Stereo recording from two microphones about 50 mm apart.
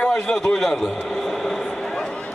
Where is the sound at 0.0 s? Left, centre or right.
Centre.